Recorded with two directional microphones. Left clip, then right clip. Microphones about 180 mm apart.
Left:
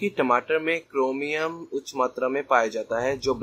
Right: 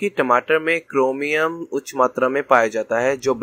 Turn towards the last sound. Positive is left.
turn(degrees=-25)  # may be behind; listen again after turning